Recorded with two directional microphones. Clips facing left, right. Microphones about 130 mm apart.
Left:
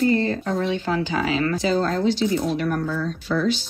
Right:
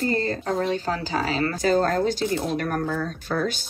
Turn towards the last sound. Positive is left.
turn(degrees=-50)  # may be behind; listen again after turning